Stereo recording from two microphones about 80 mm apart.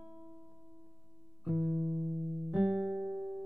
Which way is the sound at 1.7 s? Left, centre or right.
Centre.